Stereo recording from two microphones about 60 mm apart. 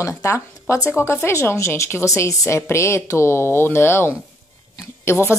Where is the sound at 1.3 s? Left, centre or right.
Left.